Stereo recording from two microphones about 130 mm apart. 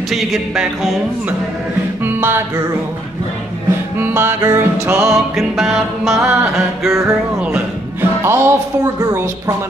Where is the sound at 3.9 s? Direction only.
15° right (ahead or behind).